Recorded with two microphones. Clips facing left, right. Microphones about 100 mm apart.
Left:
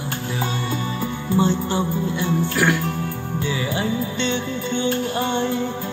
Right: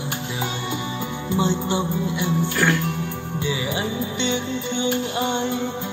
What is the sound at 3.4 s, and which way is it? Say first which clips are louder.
Music: left 1 dB; 20° right (ahead or behind).